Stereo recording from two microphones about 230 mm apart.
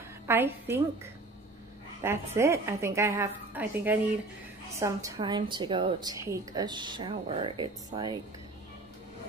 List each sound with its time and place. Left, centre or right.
0.3 s a woman's voice: centre
2.0 s a woman's voice: centre